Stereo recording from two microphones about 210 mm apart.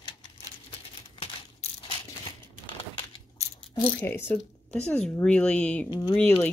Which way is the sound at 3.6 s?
10° left (ahead or behind).